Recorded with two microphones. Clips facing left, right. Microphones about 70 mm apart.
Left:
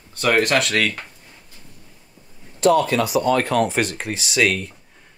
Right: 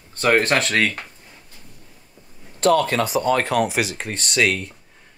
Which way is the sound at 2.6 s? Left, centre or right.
Right.